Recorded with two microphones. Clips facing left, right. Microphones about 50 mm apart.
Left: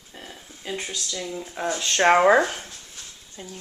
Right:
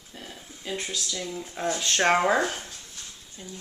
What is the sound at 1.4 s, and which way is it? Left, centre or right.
Speech, centre.